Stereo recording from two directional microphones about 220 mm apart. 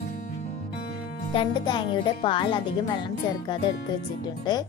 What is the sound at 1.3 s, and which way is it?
Speech, 20° left (ahead or behind).